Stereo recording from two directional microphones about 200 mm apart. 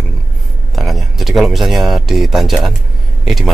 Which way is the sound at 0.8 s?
Centre (ahead or behind).